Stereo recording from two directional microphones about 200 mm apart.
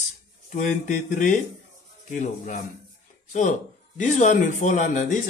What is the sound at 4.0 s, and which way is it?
Speech, 40° left (ahead or behind).